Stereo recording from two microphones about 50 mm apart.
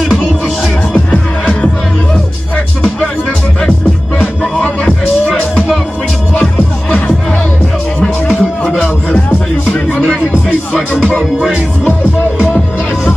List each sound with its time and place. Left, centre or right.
0.9 s music: left
8.0 s music: centre
11.4 s music: centre